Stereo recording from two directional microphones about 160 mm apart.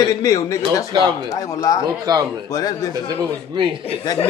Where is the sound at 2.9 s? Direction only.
25° right (ahead or behind).